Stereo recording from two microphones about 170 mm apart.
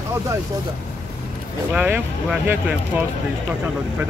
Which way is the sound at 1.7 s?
10° right (ahead or behind).